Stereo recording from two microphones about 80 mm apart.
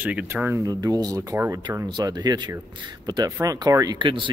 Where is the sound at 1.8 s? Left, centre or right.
Right.